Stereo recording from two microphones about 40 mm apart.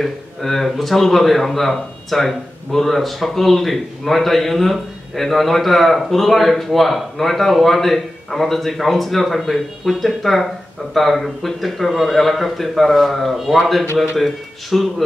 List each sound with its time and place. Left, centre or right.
0.0 s speech: centre